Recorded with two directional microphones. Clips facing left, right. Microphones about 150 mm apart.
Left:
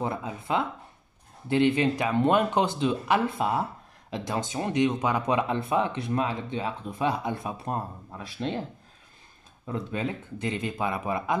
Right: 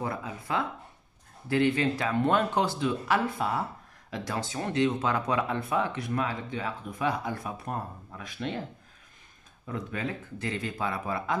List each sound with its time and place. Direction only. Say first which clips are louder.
0.0 s speech: left 3 dB; 25° left (ahead or behind)
9.7 s speech: left 3 dB; 25° left (ahead or behind)